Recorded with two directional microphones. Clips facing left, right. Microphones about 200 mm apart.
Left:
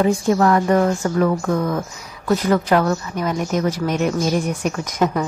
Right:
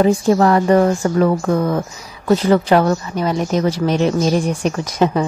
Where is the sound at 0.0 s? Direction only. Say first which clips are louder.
Right 3 dB; 30° right (ahead or behind).